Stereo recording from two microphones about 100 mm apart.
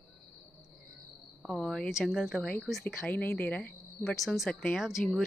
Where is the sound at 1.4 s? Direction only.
5° left (ahead or behind).